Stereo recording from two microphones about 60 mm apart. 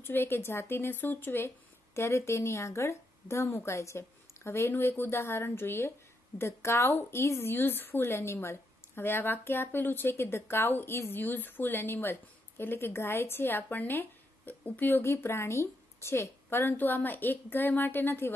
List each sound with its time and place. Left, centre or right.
0.0 s a woman's voice: left
2.0 s a woman's voice: left
15.0 s a woman's voice: left